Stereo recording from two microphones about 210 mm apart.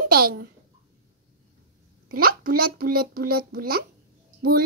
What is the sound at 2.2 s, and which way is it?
Speech, 45° right (ahead or behind).